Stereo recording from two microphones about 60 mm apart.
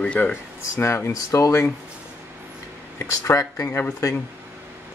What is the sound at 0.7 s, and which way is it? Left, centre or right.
Speech, left.